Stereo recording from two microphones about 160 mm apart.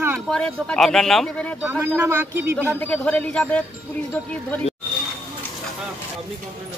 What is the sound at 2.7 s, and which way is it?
Speech, 10° left (ahead or behind).